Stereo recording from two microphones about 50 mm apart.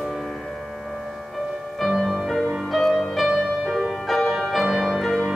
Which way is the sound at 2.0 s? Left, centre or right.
Centre.